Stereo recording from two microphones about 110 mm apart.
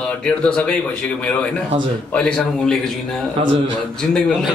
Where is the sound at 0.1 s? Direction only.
10° left (ahead or behind).